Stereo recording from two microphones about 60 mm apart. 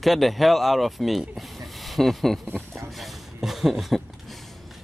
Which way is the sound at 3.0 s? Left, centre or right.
Centre.